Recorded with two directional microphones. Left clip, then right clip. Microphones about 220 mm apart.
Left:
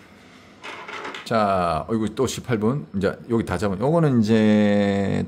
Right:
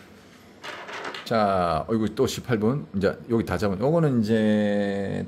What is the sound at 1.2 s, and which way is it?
Speech, 10° left (ahead or behind).